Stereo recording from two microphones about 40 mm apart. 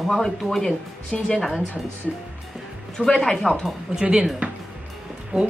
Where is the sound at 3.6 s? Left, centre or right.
Centre.